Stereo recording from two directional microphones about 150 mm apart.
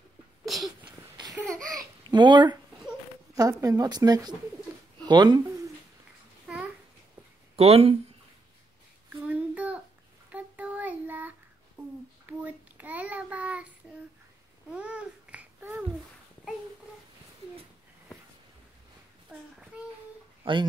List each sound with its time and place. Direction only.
0.5 s a sound: centre (ahead or behind)
1.1 s laughter: 25° right (ahead or behind)
1.5 s babbling: 5° left (ahead or behind)
2.0 s speech: 30° right (ahead or behind)
6.4 s babbling: 5° right (ahead or behind)
7.5 s speech: 40° right (ahead or behind)
9.1 s child singing: 10° right (ahead or behind)
14.7 s babbling: 5° right (ahead or behind)
19.3 s child singing: 10° right (ahead or behind)
19.7 s a sound: 5° right (ahead or behind)
20.4 s speech: 35° right (ahead or behind)